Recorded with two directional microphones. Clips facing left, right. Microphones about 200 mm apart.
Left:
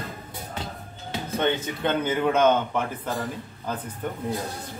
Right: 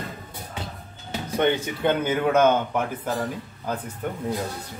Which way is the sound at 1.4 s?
10° right (ahead or behind).